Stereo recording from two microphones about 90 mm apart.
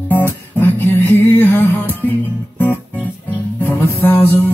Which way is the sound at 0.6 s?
25° left (ahead or behind).